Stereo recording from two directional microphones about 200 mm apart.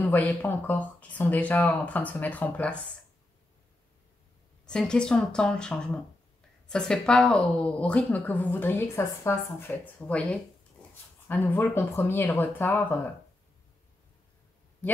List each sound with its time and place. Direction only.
0.0 s a woman's voice: 10° left (ahead or behind)
4.6 s a woman's voice: 5° left (ahead or behind)
11.2 s a woman's voice: 10° left (ahead or behind)